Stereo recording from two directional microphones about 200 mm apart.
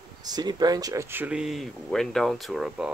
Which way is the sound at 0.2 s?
20° right (ahead or behind).